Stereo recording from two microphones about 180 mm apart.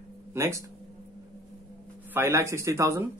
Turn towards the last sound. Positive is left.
turn(degrees=-15)  # may be behind; listen again after turning